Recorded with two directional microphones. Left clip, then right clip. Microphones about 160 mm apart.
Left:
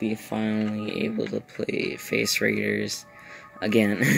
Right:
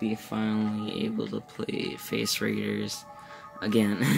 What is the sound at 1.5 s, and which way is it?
Speech, 5° right (ahead or behind).